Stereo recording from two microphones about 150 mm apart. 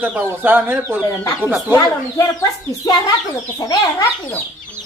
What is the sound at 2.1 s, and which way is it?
Speech, 25° left (ahead or behind).